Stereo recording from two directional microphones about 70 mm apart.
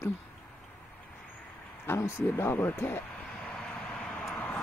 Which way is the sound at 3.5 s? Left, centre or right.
Left.